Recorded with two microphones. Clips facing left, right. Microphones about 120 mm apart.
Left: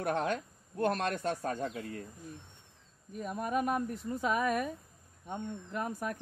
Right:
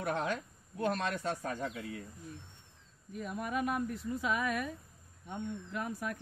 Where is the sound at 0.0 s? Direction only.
55° left (ahead or behind).